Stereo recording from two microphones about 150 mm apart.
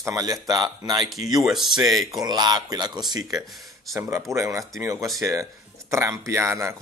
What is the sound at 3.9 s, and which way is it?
Speech, 20° right (ahead or behind).